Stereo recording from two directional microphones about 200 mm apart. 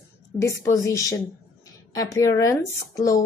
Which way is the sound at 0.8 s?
15° left (ahead or behind).